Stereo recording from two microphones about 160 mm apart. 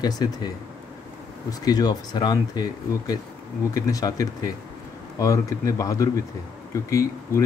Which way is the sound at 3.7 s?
20° left (ahead or behind).